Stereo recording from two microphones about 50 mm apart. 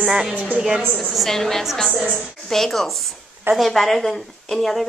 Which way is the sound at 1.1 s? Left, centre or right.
Centre.